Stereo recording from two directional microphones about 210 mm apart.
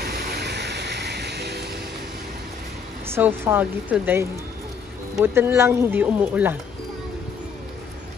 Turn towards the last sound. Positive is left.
turn(degrees=-10)  # may be behind; listen again after turning